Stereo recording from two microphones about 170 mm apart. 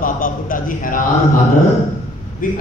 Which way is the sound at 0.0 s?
55° left (ahead or behind).